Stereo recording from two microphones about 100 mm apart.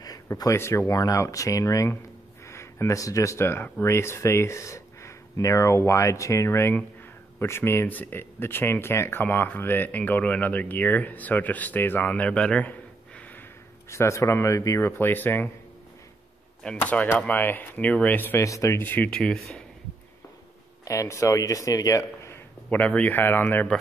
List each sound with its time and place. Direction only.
0.4 s speech: 30° left (ahead or behind)
13.8 s speech: 30° left (ahead or behind)
16.7 s speech: 15° left (ahead or behind)
19.0 s speech: 5° left (ahead or behind)
20.8 s speech: 35° left (ahead or behind)
22.7 s speech: 15° left (ahead or behind)